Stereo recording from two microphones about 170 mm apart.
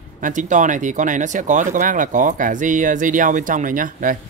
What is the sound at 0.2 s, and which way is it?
Speech, 50° right (ahead or behind).